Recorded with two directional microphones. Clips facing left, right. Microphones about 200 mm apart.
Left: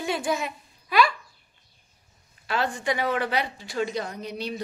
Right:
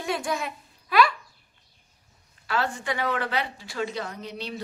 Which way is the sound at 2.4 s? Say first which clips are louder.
Left 2 dB; 15° left (ahead or behind).